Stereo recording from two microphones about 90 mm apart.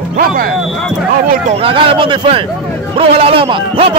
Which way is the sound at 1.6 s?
75° right (ahead or behind).